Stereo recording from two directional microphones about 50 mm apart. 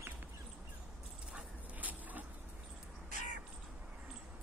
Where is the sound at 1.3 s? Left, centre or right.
Right.